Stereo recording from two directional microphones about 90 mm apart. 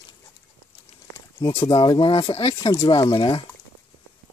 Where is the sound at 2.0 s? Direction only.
90° left.